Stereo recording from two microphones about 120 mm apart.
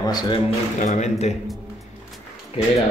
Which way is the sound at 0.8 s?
75° left (ahead or behind).